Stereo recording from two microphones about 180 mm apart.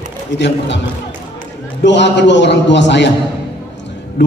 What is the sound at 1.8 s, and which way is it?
A man's voice, 75° left (ahead or behind).